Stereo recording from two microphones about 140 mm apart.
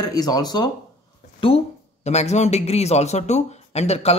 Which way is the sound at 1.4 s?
40° left (ahead or behind).